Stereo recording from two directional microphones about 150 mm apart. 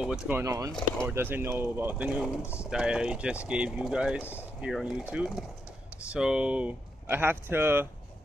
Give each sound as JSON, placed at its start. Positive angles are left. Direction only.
{"t": 0.0, "sound": "speech", "side_deg": -5}
{"t": 0.4, "sound": "speech", "side_deg": -20}
{"t": 2.4, "sound": "speech", "side_deg": 15}
{"t": 2.7, "sound": "speech", "side_deg": -5}